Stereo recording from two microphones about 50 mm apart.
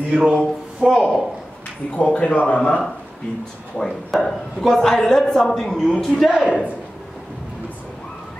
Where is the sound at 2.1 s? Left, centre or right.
Left.